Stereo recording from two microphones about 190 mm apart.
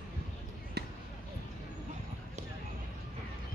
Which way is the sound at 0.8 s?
60° right (ahead or behind).